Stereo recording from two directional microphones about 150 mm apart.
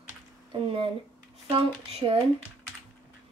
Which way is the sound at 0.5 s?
35° right (ahead or behind).